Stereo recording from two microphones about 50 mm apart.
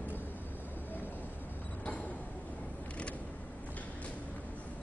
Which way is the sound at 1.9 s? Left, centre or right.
Left.